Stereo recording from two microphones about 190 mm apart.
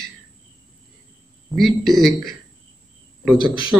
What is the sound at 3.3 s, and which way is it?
Speech, 25° left (ahead or behind).